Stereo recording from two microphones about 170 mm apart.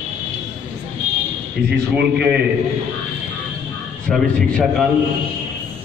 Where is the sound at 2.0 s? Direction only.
5° right (ahead or behind).